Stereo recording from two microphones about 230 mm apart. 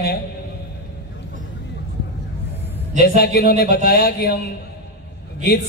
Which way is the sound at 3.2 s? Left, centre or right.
Left.